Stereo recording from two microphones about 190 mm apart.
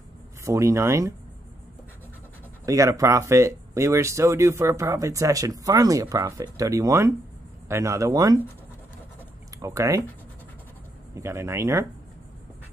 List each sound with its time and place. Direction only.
0.5 s speech: 15° right (ahead or behind)
2.6 s speech: 15° right (ahead or behind)
9.6 s speech: 15° right (ahead or behind)
11.1 s speech: 15° right (ahead or behind)